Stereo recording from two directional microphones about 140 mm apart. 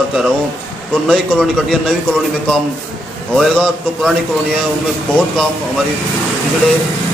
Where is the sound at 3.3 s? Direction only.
Centre (ahead or behind).